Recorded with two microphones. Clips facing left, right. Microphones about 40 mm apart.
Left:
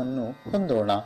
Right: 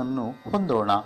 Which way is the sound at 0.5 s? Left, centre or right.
Right.